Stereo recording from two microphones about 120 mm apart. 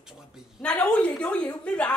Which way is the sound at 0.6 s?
10° left (ahead or behind).